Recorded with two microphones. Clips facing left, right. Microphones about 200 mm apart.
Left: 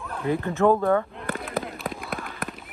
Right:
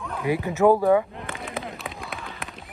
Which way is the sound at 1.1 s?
Centre (ahead or behind).